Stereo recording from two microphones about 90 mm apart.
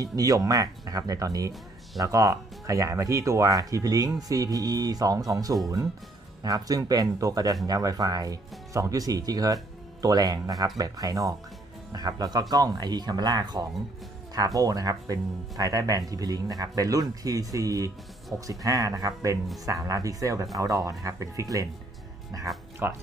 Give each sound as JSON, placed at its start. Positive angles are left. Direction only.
{"t": 0.0, "sound": "speech", "side_deg": -40}
{"t": 22.8, "sound": "speech", "side_deg": -25}